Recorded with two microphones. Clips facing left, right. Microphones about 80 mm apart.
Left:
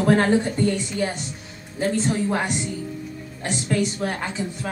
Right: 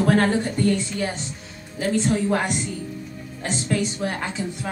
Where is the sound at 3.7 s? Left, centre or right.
Centre.